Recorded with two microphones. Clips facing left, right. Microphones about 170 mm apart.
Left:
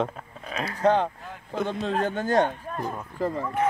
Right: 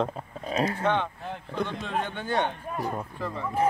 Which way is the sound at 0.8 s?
35° left (ahead or behind).